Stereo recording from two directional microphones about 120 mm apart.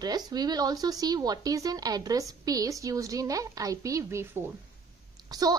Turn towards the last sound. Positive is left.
turn(degrees=-30)  # may be behind; listen again after turning